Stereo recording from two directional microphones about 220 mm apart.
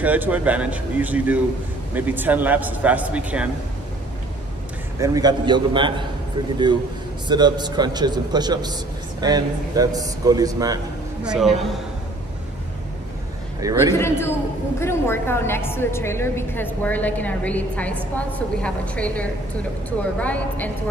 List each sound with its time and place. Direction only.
0.0 s a man's voice: 5° right (ahead or behind)
5.0 s a man's voice: 15° right (ahead or behind)
7.2 s a man's voice: 20° right (ahead or behind)
11.3 s a man's voice: centre (ahead or behind)
13.6 s a man's voice: 15° right (ahead or behind)
13.9 s a woman's voice: 10° left (ahead or behind)